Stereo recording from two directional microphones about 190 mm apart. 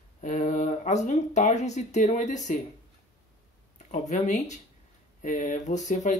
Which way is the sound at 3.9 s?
40° left (ahead or behind).